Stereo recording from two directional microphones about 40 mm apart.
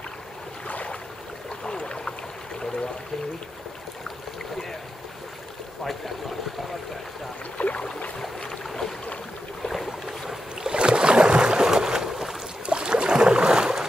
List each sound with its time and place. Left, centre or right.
0.7 s boat: left
1.6 s a sound: left
7.5 s boat: left
8.5 s boat: centre
10.6 s boat: right
12.6 s boat: right